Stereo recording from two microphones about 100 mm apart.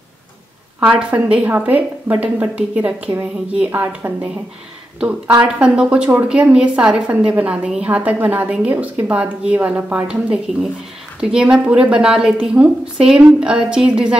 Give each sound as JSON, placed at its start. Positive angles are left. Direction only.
{"t": 0.7, "sound": "a woman's voice", "side_deg": -15}
{"t": 5.4, "sound": "a woman's voice", "side_deg": -10}